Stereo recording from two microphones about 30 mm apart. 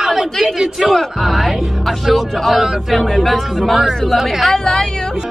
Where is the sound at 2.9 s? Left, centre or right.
Centre.